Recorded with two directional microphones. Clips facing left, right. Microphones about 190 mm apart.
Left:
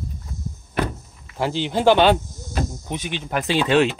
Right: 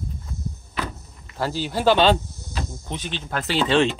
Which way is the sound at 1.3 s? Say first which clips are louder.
Left 3 dB; 20° left (ahead or behind).